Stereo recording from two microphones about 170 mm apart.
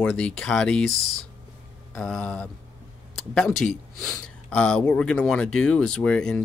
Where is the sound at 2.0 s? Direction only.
5° left (ahead or behind).